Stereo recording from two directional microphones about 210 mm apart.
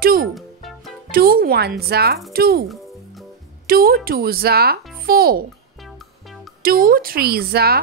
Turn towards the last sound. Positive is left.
turn(degrees=-45)  # may be behind; listen again after turning